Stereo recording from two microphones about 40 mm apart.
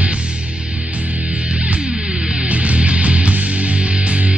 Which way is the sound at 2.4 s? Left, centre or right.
Right.